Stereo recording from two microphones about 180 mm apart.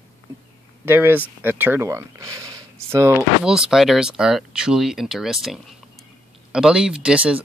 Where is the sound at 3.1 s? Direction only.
5° right (ahead or behind).